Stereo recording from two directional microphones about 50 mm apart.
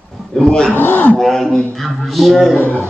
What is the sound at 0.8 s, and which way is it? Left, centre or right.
Speech, left.